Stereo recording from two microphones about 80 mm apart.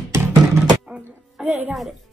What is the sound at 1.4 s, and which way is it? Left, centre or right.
Speech, right.